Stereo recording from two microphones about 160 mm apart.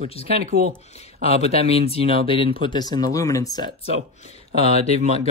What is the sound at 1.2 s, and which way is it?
Speech, 40° left (ahead or behind).